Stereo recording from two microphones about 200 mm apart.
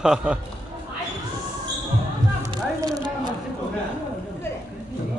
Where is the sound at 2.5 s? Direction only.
20° right (ahead or behind).